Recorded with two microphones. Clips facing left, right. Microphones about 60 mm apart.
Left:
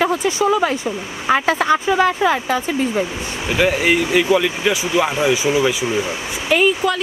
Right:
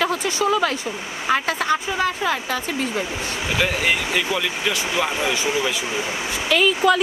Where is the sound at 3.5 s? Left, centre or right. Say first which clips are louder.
Left 6 dB; centre.